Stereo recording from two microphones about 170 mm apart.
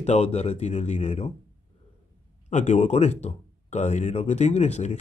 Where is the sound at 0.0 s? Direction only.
40° left (ahead or behind).